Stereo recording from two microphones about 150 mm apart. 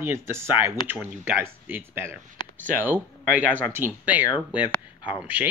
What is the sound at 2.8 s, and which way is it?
Speech, 10° right (ahead or behind).